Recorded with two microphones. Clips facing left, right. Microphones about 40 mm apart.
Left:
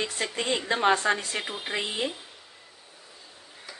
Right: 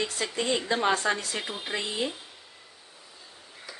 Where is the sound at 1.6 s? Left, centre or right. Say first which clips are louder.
Even; left.